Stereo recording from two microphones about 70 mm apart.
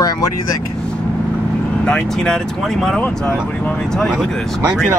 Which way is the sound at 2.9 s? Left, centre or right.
Centre.